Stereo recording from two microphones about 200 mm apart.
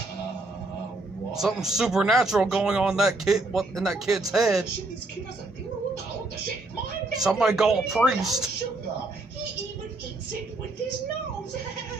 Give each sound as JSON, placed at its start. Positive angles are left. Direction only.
{"t": 1.3, "sound": "speech", "side_deg": 0}
{"t": 7.2, "sound": "speech", "side_deg": -5}